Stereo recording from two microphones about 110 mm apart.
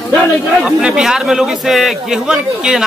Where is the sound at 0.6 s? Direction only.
5° right (ahead or behind).